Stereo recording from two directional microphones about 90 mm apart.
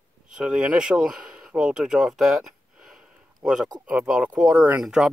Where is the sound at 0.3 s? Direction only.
10° right (ahead or behind).